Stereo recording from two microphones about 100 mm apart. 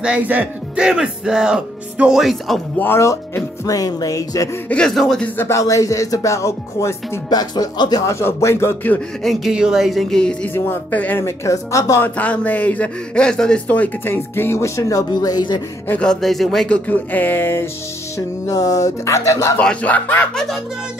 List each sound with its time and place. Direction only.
0.0 s speech: 15° right (ahead or behind)
2.8 s speech: 25° left (ahead or behind)
4.6 s speech: 10° left (ahead or behind)
5.4 s speech: 30° left (ahead or behind)
7.2 s speech: 40° left (ahead or behind)
8.0 s a man's voice: 30° left (ahead or behind)
9.2 s speech: centre (ahead or behind)
10.5 s a man's voice: 20° left (ahead or behind)
12.0 s a man's voice: 15° left (ahead or behind); by 15.6 s 45° left (ahead or behind)
15.9 s speech: 10° left (ahead or behind)
18.1 s speech: 35° left (ahead or behind)
19.6 s speech: 15° left (ahead or behind)